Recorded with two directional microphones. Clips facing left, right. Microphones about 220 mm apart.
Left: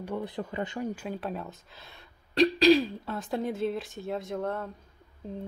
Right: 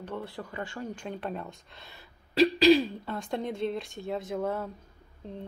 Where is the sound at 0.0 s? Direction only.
15° left (ahead or behind).